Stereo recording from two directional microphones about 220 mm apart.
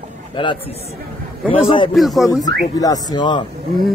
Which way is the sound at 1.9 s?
Centre (ahead or behind).